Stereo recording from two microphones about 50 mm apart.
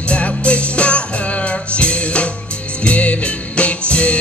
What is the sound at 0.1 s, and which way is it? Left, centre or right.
Music, left.